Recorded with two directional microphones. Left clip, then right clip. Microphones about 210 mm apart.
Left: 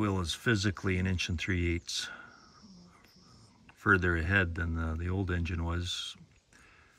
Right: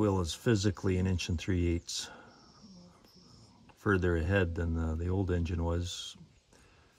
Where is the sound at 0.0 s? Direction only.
15° right (ahead or behind).